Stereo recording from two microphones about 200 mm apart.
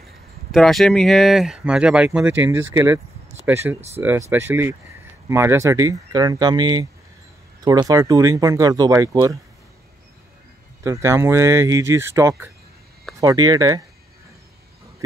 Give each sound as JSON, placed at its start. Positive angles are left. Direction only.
{"t": 0.5, "sound": "speech", "side_deg": 0}
{"t": 10.8, "sound": "speech", "side_deg": -15}